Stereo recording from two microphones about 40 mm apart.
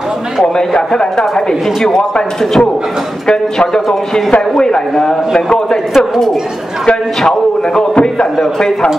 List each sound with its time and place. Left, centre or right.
1.3 s a man's voice: centre
3.3 s a man's voice: centre
5.9 s speech: centre
7.2 s a man's voice: left